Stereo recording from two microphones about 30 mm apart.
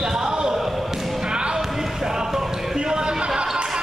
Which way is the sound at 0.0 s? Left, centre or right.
Right.